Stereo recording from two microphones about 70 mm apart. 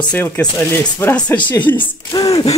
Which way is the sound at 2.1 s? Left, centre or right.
Left.